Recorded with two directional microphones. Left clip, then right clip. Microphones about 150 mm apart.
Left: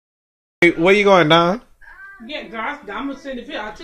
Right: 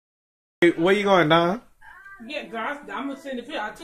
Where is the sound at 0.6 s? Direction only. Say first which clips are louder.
Left 6 dB; 5° left (ahead or behind).